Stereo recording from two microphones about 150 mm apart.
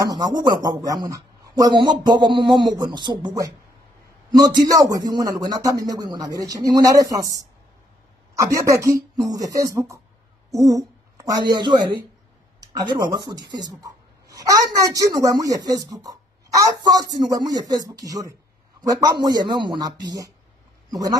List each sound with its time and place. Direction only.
0.0 s a woman's voice: 25° right (ahead or behind)